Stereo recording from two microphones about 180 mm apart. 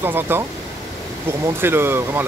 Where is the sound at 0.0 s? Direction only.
10° right (ahead or behind).